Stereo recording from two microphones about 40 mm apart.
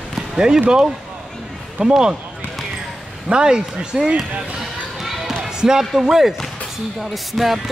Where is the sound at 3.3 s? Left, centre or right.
Centre.